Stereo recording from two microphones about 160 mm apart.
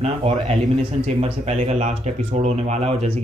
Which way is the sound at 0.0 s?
40° right (ahead or behind).